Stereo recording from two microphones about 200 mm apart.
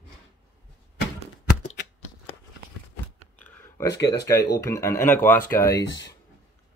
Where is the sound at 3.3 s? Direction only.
10° left (ahead or behind).